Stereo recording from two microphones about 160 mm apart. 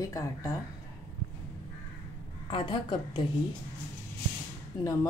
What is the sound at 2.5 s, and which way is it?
Speech, 30° left (ahead or behind).